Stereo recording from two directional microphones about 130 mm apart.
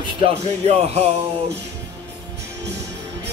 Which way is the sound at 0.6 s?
55° right (ahead or behind).